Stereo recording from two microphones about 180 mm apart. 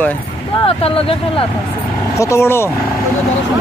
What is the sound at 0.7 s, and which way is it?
Speech, 30° left (ahead or behind).